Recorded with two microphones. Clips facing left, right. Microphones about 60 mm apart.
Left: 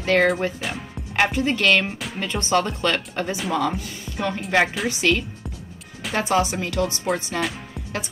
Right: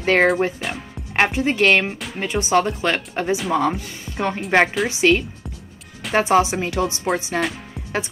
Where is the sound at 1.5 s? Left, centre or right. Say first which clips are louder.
Right 3 dB; centre.